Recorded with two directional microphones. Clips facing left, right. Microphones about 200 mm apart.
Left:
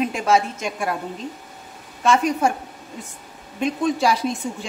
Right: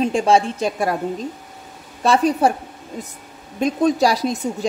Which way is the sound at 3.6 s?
40° right (ahead or behind).